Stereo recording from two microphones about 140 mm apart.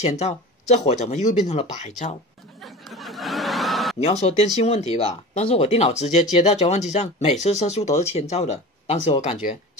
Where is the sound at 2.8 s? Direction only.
Centre (ahead or behind).